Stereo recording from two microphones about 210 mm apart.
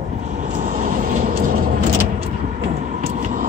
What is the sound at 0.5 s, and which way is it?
Vehicle, 40° right (ahead or behind).